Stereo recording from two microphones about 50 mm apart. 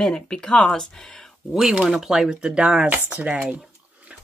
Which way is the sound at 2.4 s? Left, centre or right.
Centre.